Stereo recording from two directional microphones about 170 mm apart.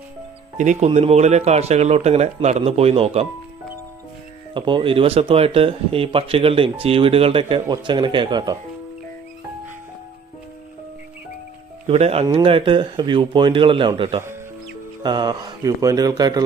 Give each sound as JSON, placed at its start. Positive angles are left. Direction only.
{"t": 0.6, "sound": "speech", "side_deg": -45}
{"t": 4.6, "sound": "speech", "side_deg": -30}
{"t": 11.9, "sound": "a man's voice", "side_deg": -35}